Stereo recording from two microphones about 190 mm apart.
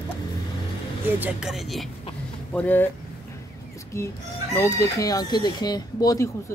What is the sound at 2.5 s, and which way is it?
Chicken, 10° left (ahead or behind).